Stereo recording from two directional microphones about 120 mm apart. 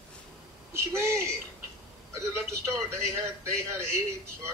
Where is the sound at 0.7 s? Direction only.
20° right (ahead or behind).